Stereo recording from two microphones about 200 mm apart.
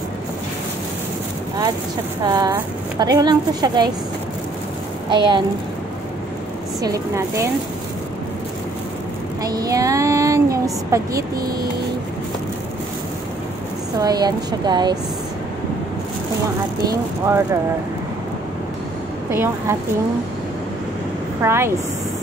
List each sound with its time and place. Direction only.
2.2 s a woman's voice: 20° right (ahead or behind)
5.1 s a woman's voice: 25° right (ahead or behind)
6.8 s a woman's voice: 15° right (ahead or behind)
9.5 s a woman's voice: 20° right (ahead or behind)
13.9 s a woman's voice: 20° right (ahead or behind)
16.9 s a woman's voice: 15° right (ahead or behind)
19.3 s a woman's voice: 10° right (ahead or behind)
21.4 s a woman's voice: 10° right (ahead or behind)